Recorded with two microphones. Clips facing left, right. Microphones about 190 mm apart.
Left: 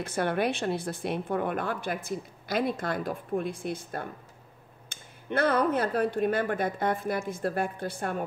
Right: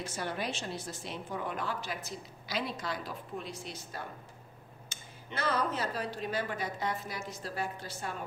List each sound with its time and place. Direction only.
0.0 s a woman's voice: 60° left (ahead or behind)